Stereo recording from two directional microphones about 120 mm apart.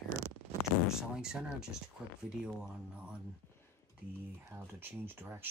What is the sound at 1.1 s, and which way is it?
Speech, 5° right (ahead or behind).